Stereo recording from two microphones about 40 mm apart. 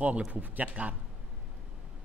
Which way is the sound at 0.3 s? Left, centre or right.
Right.